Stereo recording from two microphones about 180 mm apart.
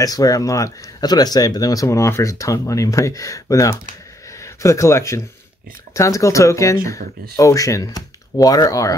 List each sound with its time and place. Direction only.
0.0 s speech: 20° left (ahead or behind)